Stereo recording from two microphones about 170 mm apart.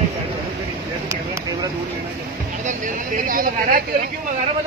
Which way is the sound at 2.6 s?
50° right (ahead or behind).